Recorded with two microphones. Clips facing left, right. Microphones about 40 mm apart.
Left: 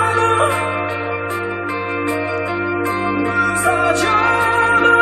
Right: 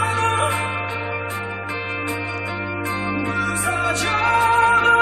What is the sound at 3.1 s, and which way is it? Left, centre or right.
Music, left.